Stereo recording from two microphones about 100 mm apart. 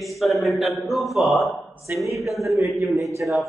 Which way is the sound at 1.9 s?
20° right (ahead or behind).